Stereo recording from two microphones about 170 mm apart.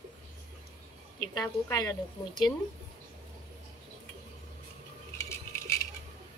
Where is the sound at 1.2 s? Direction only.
20° left (ahead or behind).